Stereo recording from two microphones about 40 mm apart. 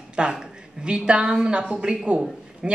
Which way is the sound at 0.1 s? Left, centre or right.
Right.